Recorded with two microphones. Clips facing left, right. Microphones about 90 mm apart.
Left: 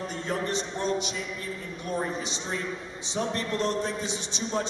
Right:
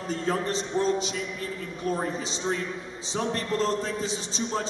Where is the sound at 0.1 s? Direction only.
35° right (ahead or behind).